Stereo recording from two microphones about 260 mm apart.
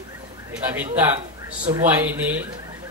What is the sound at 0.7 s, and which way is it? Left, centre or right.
A man's voice, centre.